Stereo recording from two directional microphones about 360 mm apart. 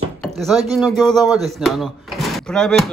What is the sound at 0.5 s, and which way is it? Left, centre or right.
Speech, centre.